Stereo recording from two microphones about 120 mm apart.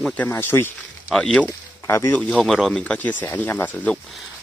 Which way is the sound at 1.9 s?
25° left (ahead or behind).